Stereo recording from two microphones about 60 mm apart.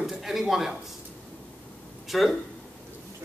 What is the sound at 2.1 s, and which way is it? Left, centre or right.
Speech, centre.